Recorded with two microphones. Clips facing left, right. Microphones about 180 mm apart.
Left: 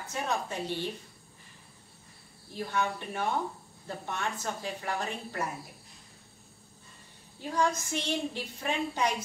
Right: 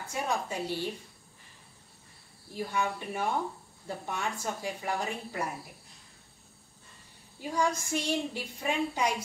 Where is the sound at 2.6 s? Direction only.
10° right (ahead or behind).